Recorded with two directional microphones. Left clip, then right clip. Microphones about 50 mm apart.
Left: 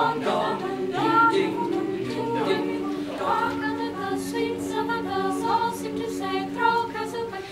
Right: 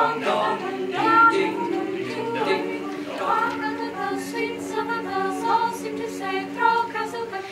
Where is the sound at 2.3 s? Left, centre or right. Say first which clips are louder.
Right 2 dB; centre.